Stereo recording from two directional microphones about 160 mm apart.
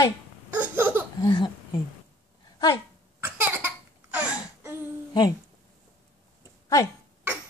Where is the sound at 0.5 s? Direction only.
10° right (ahead or behind).